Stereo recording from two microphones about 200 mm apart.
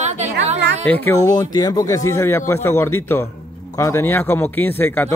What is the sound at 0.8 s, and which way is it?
A man's voice, 10° left (ahead or behind).